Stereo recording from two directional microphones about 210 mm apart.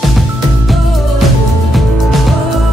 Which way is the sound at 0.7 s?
Centre (ahead or behind).